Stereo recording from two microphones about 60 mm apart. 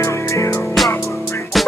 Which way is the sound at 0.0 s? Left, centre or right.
Left.